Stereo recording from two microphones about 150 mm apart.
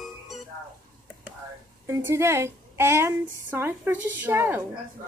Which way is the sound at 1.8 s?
20° right (ahead or behind).